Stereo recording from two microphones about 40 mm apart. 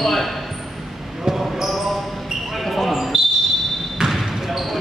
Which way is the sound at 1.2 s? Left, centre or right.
Centre.